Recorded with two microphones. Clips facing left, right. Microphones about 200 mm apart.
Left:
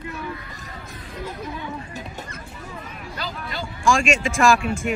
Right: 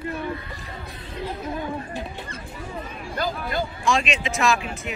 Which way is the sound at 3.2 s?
50° right (ahead or behind).